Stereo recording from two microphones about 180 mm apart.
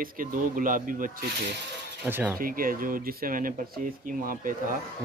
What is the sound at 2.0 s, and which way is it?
Speech, 10° right (ahead or behind).